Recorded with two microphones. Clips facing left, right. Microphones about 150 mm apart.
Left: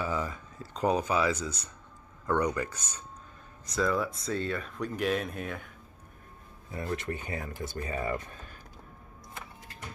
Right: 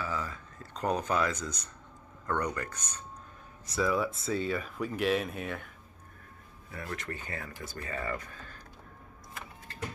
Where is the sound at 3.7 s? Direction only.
5° right (ahead or behind).